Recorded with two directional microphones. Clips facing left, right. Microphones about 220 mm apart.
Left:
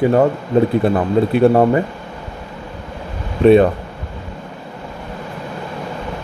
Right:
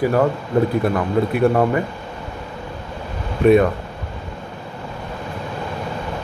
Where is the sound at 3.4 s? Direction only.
30° left (ahead or behind).